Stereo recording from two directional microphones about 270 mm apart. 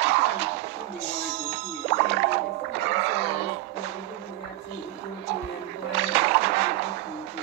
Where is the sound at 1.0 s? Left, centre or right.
Right.